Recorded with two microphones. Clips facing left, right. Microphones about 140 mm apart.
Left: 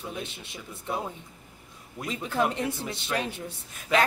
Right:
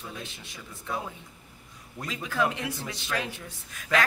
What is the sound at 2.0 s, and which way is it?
Speech, 25° left (ahead or behind).